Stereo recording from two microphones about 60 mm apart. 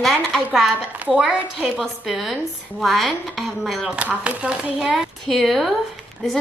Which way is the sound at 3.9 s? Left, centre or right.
Right.